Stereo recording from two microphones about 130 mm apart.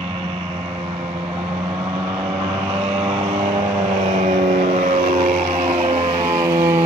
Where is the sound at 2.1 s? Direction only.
45° right (ahead or behind).